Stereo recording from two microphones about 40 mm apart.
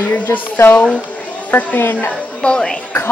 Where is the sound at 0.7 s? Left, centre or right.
Left.